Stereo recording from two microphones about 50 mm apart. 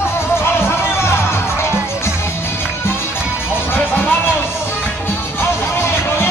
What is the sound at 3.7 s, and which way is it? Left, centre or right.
Music, left.